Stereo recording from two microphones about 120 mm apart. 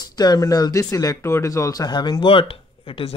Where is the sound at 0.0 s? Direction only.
35° left (ahead or behind).